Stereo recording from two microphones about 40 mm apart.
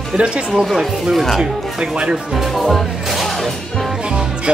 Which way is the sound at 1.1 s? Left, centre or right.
Centre.